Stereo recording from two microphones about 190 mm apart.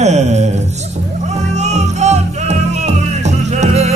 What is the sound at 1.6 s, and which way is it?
Music, 35° right (ahead or behind).